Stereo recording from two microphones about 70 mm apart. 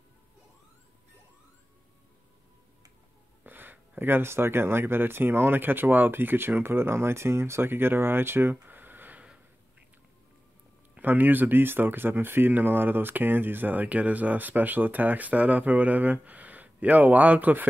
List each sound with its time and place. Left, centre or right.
3.4 s speech: right
11.0 s speech: right